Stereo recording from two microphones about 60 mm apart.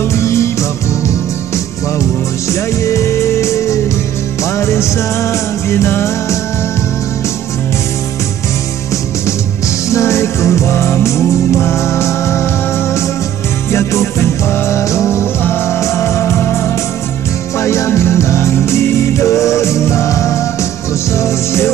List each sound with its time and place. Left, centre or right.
0.2 s music: left
2.5 s music: left
9.8 s music: left
13.7 s music: left